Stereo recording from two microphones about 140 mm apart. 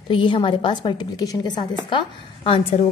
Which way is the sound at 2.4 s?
40° left (ahead or behind).